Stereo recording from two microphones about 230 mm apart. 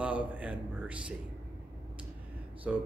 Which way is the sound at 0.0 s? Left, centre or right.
Centre.